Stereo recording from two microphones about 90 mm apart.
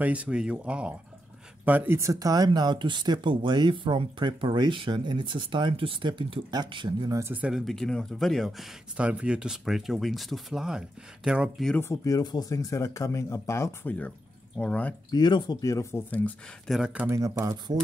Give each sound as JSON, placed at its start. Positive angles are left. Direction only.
{"t": 0.0, "sound": "speech", "side_deg": -15}
{"t": 2.0, "sound": "speech", "side_deg": -40}
{"t": 6.5, "sound": "speech", "side_deg": -55}
{"t": 7.2, "sound": "speech", "side_deg": -20}
{"t": 7.5, "sound": "speech", "side_deg": 5}
{"t": 8.9, "sound": "speech", "side_deg": -10}
{"t": 11.9, "sound": "speech", "side_deg": 40}
{"t": 13.8, "sound": "speech", "side_deg": 15}
{"t": 15.0, "sound": "speech", "side_deg": 50}
{"t": 15.6, "sound": "speech", "side_deg": 35}
{"t": 16.1, "sound": "speech", "side_deg": 15}
{"t": 16.8, "sound": "speech", "side_deg": -15}
{"t": 17.1, "sound": "speech", "side_deg": -35}